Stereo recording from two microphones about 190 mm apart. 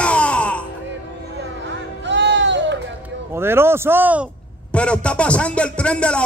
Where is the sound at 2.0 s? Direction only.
70° right (ahead or behind).